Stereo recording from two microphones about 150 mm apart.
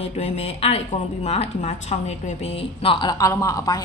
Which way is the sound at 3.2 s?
20° left (ahead or behind).